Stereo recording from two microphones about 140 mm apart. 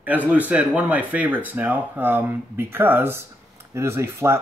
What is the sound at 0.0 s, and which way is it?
Speech, 10° right (ahead or behind).